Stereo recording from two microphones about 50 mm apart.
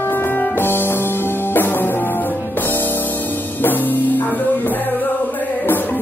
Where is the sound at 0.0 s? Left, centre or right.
Left.